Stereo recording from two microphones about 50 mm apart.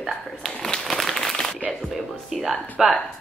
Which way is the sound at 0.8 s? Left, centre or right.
Centre.